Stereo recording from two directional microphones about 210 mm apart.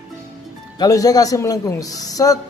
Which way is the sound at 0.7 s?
15° left (ahead or behind).